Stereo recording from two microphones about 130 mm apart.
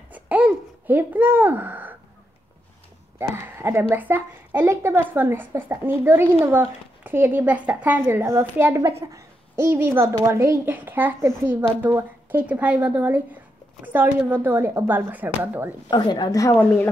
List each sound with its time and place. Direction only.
0.1 s babbling: 10° right (ahead or behind)
3.2 s a woman's voice: 20° right (ahead or behind)
15.9 s a woman's voice: 35° left (ahead or behind)
16.5 s a woman's voice: 10° left (ahead or behind)